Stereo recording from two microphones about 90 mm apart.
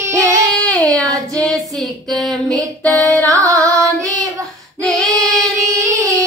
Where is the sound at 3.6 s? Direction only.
35° right (ahead or behind).